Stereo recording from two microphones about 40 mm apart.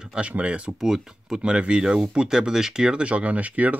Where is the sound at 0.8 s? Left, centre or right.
Centre.